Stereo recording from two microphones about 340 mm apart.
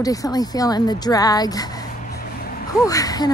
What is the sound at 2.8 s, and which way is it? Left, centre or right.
Speech, centre.